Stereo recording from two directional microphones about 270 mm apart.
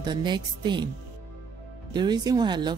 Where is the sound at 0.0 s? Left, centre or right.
Centre.